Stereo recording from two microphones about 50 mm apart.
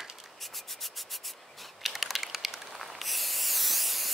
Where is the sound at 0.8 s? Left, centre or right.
Centre.